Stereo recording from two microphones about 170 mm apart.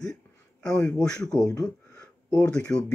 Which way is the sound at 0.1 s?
20° left (ahead or behind).